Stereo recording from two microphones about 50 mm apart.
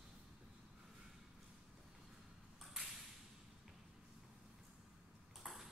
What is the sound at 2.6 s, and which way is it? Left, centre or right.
Ping, centre.